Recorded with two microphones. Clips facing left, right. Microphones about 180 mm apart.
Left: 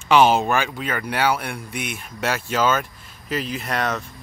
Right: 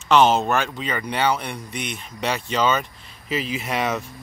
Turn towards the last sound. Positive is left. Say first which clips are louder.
# right 1 dB
turn(degrees=-5)  # may be behind; listen again after turning